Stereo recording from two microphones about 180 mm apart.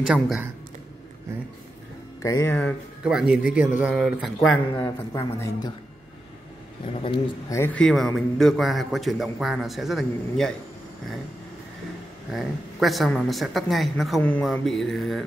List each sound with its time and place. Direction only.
0.0 s a man's voice: 5° right (ahead or behind)
2.2 s speech: 15° left (ahead or behind)
3.0 s a man's voice: 5° right (ahead or behind)
4.8 s speech: 15° left (ahead or behind)
6.9 s speech: 30° left (ahead or behind)
7.4 s a man's voice: 15° left (ahead or behind)
12.3 s a man's voice: centre (ahead or behind)